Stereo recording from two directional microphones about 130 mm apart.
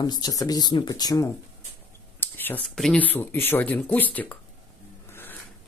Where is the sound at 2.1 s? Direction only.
15° left (ahead or behind).